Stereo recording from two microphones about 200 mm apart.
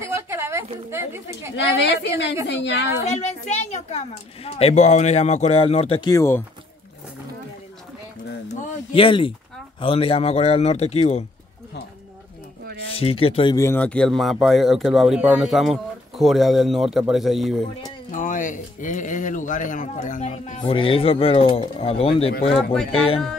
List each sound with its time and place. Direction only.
0.0 s a sound: 15° right (ahead or behind)
0.8 s a woman's voice: 15° right (ahead or behind)
1.8 s a woman's voice: 60° left (ahead or behind)
3.1 s a child's voice: 35° left (ahead or behind); by 6.4 s 15° left (ahead or behind)
8.9 s a child's voice: 25° left (ahead or behind)
12.8 s speech: 30° left (ahead or behind); by 17.6 s centre (ahead or behind)
18.1 s a child's voice: 40° left (ahead or behind)
20.7 s speech: 25° left (ahead or behind)
22.6 s speech: centre (ahead or behind)
22.8 s speech: 30° left (ahead or behind)